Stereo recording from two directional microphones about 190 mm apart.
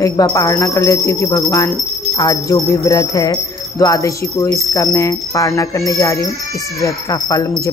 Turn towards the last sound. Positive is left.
turn(degrees=20)  # may be behind; listen again after turning